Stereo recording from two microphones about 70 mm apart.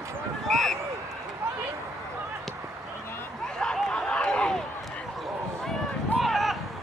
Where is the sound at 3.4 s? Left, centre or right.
Centre.